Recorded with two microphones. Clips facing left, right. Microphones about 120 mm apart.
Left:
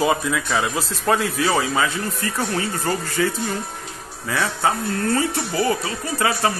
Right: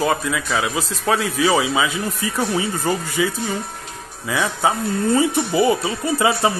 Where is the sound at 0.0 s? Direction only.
Centre (ahead or behind).